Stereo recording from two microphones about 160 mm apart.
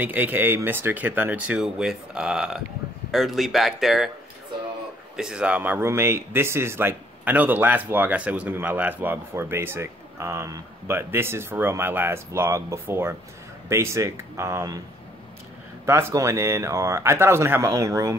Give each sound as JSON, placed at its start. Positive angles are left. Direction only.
{"t": 0.0, "sound": "speech", "side_deg": -10}
{"t": 5.1, "sound": "speech", "side_deg": -5}
{"t": 15.8, "sound": "speech", "side_deg": -20}